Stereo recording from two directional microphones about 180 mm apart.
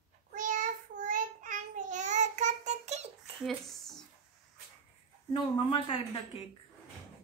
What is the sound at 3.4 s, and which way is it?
Speech, centre (ahead or behind).